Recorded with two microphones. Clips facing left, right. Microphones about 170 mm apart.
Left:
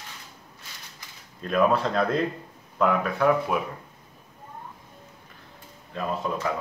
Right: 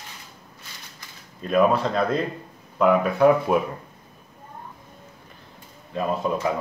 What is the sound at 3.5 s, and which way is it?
Speech, 30° right (ahead or behind).